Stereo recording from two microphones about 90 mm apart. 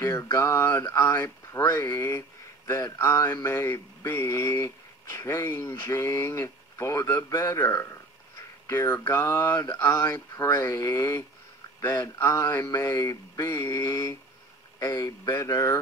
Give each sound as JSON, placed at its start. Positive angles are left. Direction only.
{"t": 0.0, "sound": "speech", "side_deg": 30}